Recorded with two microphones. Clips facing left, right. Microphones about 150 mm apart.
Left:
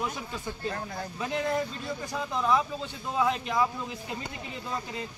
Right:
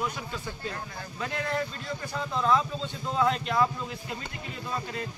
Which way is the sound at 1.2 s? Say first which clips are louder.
Left 2 dB; 15° left (ahead or behind).